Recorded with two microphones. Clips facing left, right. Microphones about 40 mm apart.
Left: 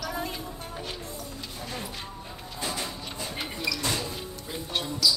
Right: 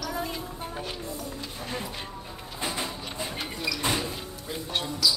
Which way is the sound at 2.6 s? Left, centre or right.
Centre.